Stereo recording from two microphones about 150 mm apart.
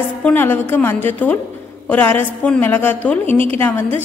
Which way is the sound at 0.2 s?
15° left (ahead or behind).